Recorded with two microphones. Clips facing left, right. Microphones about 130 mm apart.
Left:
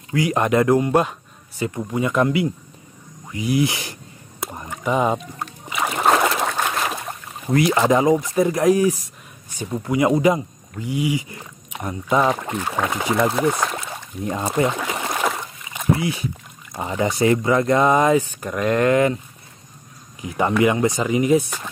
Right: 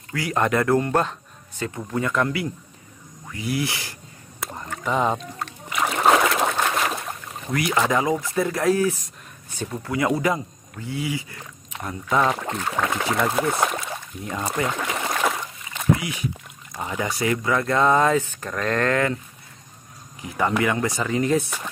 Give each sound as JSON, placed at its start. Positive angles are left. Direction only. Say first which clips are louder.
{"t": 0.1, "sound": "speech", "louder": "left 4 dB", "side_deg": 20}
{"t": 4.4, "sound": "a sound", "louder": "left 2 dB", "side_deg": 15}
{"t": 7.5, "sound": "speech", "louder": "left 5 dB", "side_deg": 25}
{"t": 14.2, "sound": "speech", "louder": "left 5 dB", "side_deg": 25}
{"t": 14.7, "sound": "a sound", "louder": "left 1 dB", "side_deg": 5}
{"t": 16.0, "sound": "speech", "louder": "left 5 dB", "side_deg": 30}
{"t": 20.2, "sound": "speech", "louder": "left 4 dB", "side_deg": 20}